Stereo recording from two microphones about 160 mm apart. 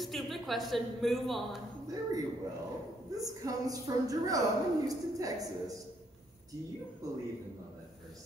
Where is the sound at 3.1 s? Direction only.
20° right (ahead or behind).